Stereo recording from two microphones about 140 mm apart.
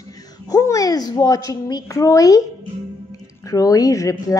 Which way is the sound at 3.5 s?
25° left (ahead or behind).